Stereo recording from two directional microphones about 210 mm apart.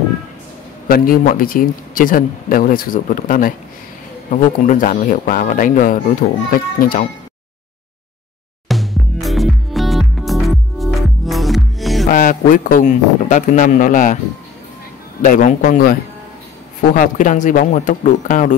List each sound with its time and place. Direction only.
0.8 s speech: 45° left (ahead or behind)
8.6 s music: centre (ahead or behind)
12.1 s speech: 40° left (ahead or behind)
15.2 s speech: 40° left (ahead or behind)